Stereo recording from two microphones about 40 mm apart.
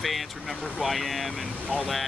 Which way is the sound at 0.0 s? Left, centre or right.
Centre.